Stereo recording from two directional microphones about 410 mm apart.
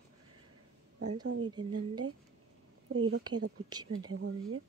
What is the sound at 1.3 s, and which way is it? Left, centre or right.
Speech, right.